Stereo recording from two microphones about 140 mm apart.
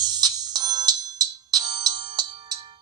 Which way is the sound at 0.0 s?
30° right (ahead or behind).